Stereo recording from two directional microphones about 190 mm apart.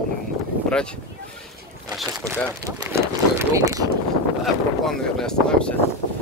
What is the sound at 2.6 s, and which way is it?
Speech, 15° right (ahead or behind).